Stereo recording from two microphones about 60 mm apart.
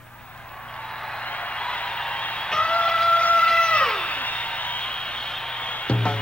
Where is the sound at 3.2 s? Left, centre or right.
Centre.